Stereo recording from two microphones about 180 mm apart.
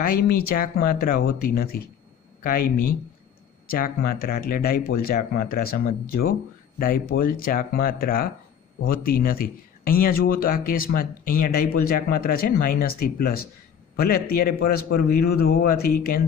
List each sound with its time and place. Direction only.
0.0 s speech: 55° left (ahead or behind)